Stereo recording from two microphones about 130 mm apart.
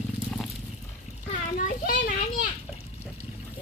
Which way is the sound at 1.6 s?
90° left.